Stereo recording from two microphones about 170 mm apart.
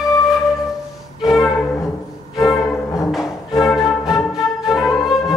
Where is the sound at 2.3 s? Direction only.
20° left (ahead or behind).